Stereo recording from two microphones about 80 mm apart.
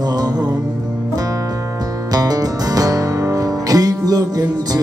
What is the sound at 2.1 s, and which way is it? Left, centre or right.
Music, right.